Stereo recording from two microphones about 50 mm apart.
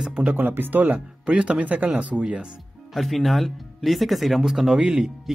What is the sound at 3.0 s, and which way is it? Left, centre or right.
Speech, centre.